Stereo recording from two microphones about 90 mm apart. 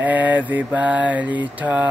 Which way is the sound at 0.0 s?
15° right (ahead or behind).